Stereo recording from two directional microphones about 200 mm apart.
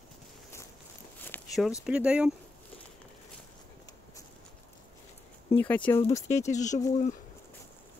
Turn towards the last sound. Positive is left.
turn(degrees=35)  # may be behind; listen again after turning